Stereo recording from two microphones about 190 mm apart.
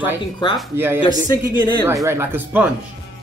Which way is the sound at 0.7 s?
10° right (ahead or behind).